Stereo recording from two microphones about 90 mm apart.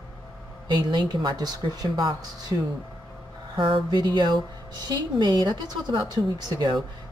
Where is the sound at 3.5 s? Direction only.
60° right (ahead or behind).